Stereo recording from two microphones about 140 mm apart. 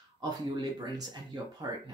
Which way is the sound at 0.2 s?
25° right (ahead or behind).